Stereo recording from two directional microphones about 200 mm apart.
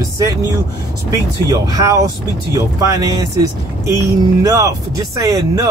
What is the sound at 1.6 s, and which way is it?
Speech, 15° right (ahead or behind).